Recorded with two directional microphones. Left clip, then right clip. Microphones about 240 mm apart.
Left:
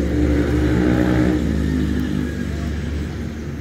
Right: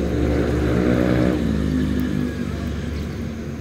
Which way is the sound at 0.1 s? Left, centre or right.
Centre.